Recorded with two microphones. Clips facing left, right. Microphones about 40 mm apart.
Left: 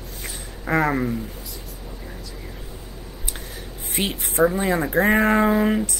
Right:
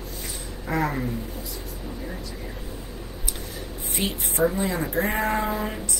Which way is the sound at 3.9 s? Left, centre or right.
Left.